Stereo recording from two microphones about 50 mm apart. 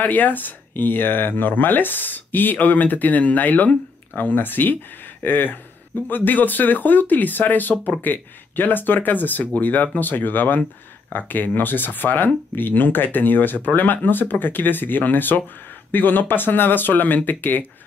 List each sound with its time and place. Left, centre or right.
0.0 s speech: left